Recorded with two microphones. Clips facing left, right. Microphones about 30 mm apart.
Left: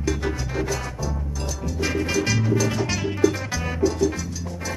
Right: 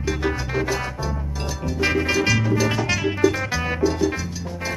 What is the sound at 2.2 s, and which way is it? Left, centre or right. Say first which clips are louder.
Music: right 3 dB; centre.